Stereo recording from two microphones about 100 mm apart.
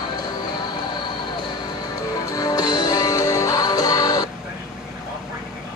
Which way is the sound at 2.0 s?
35° left (ahead or behind).